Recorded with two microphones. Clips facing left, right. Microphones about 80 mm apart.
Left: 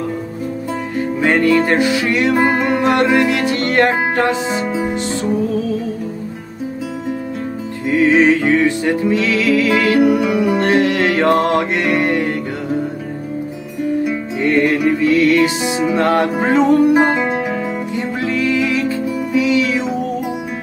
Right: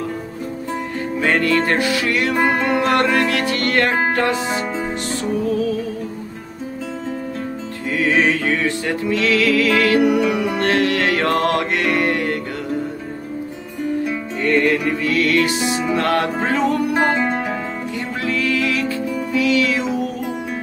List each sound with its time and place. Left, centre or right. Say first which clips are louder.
1.2 s music: left 4 dB; centre
7.9 s music: left 6 dB; left
14.4 s music: left 3 dB; centre
17.9 s music: left 3 dB; left